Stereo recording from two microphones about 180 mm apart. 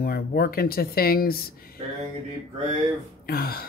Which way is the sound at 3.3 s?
55° left (ahead or behind).